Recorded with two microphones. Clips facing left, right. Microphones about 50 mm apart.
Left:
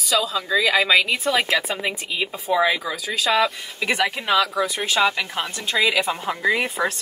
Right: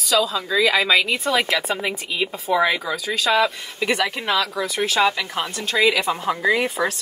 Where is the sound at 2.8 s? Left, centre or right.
Centre.